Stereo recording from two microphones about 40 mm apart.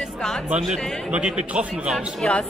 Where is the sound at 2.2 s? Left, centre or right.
Left.